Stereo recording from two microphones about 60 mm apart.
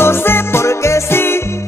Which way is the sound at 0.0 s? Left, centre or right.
Left.